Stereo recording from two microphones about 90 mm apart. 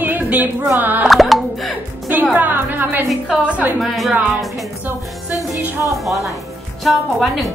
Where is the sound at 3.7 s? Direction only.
Centre (ahead or behind).